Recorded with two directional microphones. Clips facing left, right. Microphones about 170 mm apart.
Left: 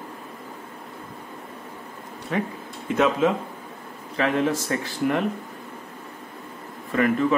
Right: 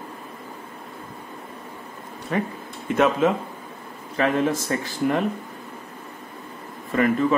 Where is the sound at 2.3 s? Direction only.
45° right (ahead or behind).